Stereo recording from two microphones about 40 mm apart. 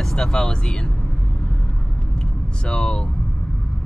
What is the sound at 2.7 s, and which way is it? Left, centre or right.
Speech, left.